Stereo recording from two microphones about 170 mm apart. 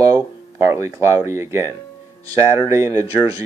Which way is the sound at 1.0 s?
15° right (ahead or behind).